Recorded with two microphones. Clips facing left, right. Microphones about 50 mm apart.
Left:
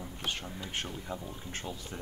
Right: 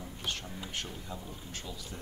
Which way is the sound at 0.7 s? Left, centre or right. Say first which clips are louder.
Left 4 dB; left.